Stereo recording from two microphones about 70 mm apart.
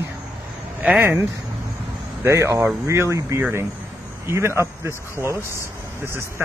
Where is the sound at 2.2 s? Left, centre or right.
Right.